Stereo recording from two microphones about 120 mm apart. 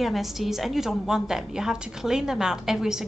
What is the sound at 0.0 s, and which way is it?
A woman's voice, centre (ahead or behind).